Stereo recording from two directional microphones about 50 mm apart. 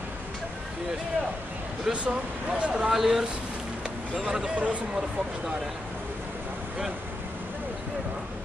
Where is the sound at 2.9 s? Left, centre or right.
Centre.